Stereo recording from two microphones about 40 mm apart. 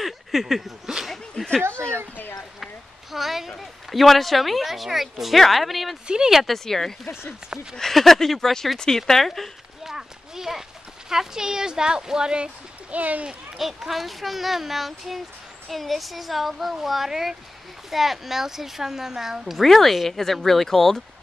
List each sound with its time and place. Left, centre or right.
0.0 s a sound: centre
1.3 s speech: centre
1.6 s a sound: right
2.6 s speech: centre
6.0 s speech: right
6.3 s speech: centre
9.8 s clip-clop: centre
11.1 s a woman's voice: centre
12.9 s speech: right
13.6 s a woman's voice: centre
19.6 s speech: centre